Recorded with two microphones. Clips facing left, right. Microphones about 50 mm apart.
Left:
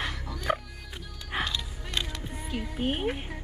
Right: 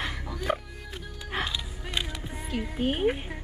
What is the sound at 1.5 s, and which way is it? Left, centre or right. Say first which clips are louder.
Music: even; centre.